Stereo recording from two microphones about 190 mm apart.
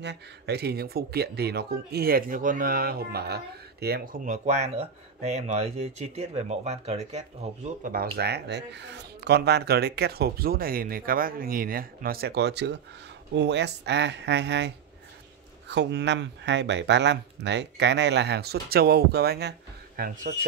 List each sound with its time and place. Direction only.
0.0 s speech: 60° right (ahead or behind); by 7.2 s 35° right (ahead or behind)
7.8 s speech: 50° right (ahead or behind)
15.7 s speech: 65° right (ahead or behind); by 20.1 s 50° right (ahead or behind)